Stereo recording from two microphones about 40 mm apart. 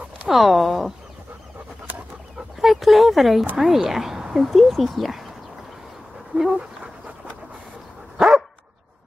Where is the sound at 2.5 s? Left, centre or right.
Centre.